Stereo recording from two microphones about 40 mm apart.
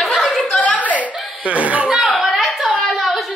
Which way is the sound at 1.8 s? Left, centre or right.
Centre.